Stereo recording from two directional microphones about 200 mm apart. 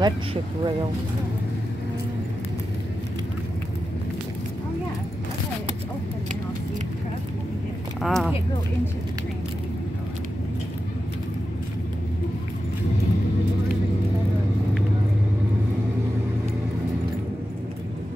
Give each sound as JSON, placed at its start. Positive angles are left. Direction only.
{"t": 0.0, "sound": "speech", "side_deg": -25}
{"t": 8.0, "sound": "speech", "side_deg": 0}